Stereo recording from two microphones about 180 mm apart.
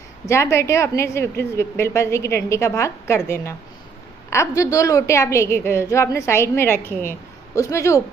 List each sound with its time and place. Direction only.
0.3 s a woman's voice: 15° left (ahead or behind)